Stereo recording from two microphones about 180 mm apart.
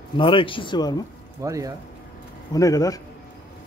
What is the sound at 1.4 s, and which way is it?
Speech, 15° right (ahead or behind).